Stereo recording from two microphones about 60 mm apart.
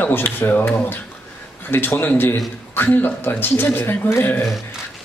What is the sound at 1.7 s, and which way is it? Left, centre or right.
Speech, left.